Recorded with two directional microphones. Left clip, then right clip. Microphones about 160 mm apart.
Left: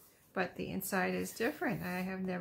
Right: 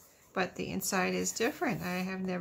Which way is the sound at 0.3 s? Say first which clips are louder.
Right 3 dB; 20° right (ahead or behind).